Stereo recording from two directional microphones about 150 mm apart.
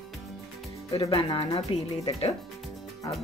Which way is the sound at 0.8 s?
25° left (ahead or behind).